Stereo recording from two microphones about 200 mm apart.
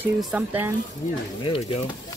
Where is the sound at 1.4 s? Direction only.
25° left (ahead or behind).